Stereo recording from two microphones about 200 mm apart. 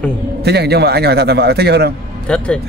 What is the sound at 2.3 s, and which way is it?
Speech, 5° left (ahead or behind).